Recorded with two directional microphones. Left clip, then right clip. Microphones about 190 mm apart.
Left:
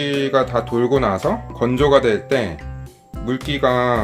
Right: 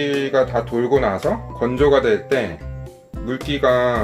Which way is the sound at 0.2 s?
45° left (ahead or behind).